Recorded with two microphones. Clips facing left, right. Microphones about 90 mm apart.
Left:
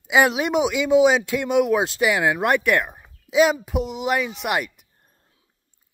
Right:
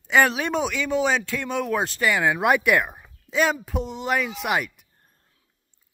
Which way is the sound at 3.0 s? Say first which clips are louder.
Left 5 dB; 10° left (ahead or behind).